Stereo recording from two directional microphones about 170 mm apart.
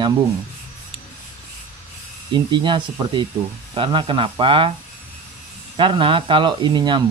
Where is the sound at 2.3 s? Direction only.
30° right (ahead or behind).